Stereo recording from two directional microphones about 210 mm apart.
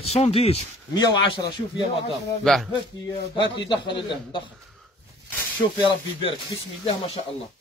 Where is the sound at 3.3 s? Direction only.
20° left (ahead or behind).